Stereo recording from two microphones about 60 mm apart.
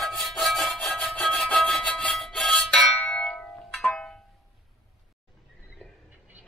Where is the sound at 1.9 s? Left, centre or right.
Centre.